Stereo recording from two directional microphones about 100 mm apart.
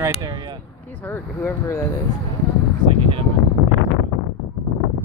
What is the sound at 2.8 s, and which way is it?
Speech, 65° right (ahead or behind).